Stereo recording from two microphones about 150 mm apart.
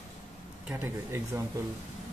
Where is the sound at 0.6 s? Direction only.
15° right (ahead or behind).